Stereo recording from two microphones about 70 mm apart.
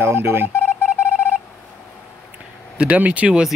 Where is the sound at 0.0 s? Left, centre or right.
Right.